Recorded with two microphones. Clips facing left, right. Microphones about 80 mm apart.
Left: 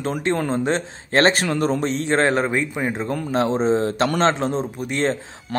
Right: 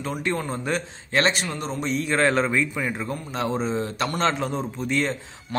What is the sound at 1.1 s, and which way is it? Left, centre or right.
Speech, left.